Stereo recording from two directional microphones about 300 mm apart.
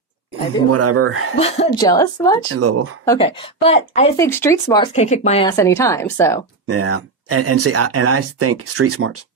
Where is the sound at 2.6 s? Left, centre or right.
Right.